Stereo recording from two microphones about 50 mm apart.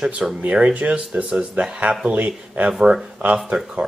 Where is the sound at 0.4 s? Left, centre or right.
Right.